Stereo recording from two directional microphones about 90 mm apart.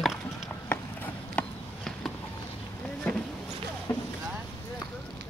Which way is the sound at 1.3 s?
5° left (ahead or behind).